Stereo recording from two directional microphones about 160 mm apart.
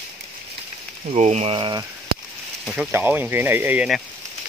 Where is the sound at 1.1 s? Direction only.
45° right (ahead or behind).